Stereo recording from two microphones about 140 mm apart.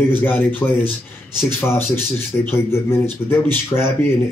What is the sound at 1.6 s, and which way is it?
A man's voice, 15° left (ahead or behind).